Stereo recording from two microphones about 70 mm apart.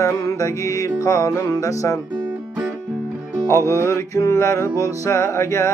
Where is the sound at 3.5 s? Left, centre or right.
Left.